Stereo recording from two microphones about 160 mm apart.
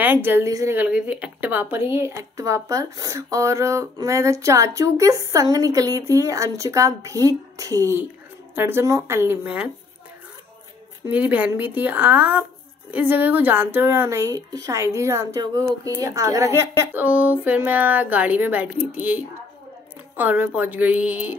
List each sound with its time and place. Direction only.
0.0 s a woman's voice: 10° right (ahead or behind)
0.7 s a woman's voice: 10° right (ahead or behind)
11.1 s a woman's voice: 10° right (ahead or behind)